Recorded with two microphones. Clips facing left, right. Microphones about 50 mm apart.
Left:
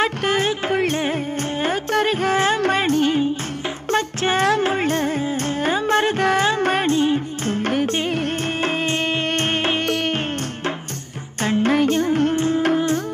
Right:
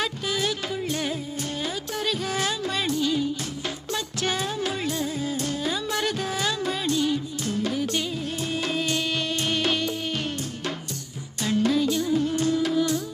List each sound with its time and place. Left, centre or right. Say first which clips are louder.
0.2 s music: left 7 dB; left
1.6 s music: left 12 dB; left
6.9 s music: left 6 dB; left
11.4 s music of bollywood: left 5 dB; left
12.4 s music: left 4 dB; left